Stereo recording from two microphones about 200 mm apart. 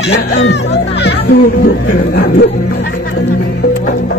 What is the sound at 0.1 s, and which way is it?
Speech, 60° left (ahead or behind).